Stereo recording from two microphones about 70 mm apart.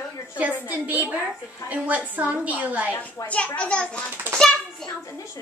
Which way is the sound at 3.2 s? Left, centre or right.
Centre.